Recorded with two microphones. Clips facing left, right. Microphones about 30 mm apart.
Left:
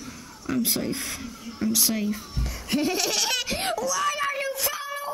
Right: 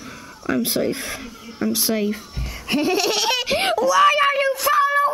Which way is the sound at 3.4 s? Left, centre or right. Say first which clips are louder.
Right 8 dB; right.